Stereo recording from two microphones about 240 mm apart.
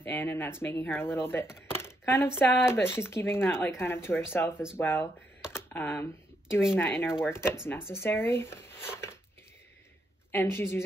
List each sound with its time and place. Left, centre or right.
0.0 s speech: centre
5.5 s computer keyboard: centre
6.8 s speech: centre
10.3 s speech: centre